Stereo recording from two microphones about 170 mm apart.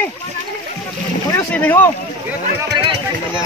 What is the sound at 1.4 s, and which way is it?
Speech, 10° left (ahead or behind).